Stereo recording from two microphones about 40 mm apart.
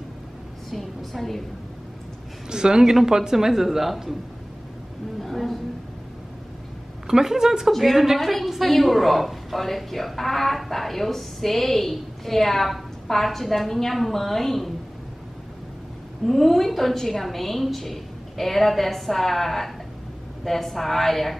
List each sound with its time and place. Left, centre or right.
0.7 s a woman's voice: centre
2.5 s speech: centre
5.2 s a sound: centre
7.1 s a woman's voice: centre
16.3 s a woman's voice: centre